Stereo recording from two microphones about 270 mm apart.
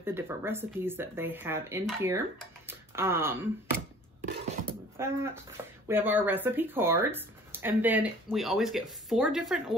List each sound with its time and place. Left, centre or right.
0.0 s speech: centre
4.2 s music: right
4.9 s speech: centre